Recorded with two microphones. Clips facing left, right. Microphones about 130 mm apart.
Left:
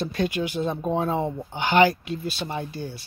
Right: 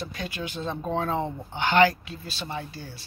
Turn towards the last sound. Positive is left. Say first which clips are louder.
# left 4 dB
turn(degrees=20)  # may be behind; listen again after turning